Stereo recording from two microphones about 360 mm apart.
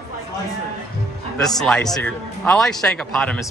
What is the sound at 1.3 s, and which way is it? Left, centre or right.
A man's voice, centre.